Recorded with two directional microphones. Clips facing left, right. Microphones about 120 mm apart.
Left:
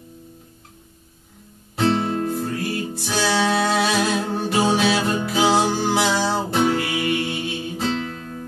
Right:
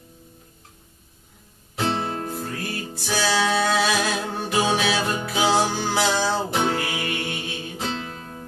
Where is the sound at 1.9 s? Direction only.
30° right (ahead or behind).